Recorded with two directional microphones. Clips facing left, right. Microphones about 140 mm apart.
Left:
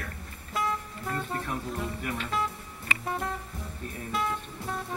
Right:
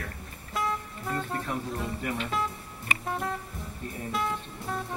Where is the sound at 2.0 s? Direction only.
20° right (ahead or behind).